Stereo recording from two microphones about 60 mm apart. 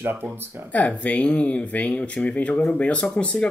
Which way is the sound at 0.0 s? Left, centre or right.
Right.